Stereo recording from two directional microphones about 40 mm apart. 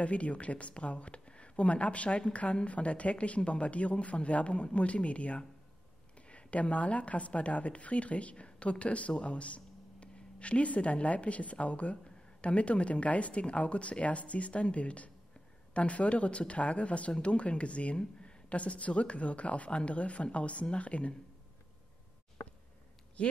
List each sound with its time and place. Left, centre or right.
0.0 s speech: left